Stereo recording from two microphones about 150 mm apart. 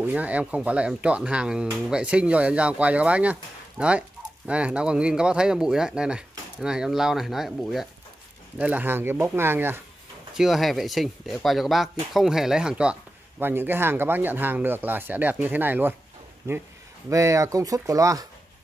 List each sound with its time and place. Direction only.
0.0 s speech: 10° right (ahead or behind)
10.3 s speech: centre (ahead or behind); by 18.2 s 20° right (ahead or behind)